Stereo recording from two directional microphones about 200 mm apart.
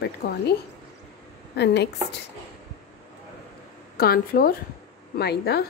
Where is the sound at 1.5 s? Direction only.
55° left (ahead or behind).